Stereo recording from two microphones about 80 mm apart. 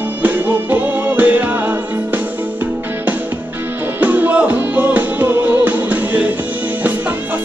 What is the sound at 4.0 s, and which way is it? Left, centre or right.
Music, right.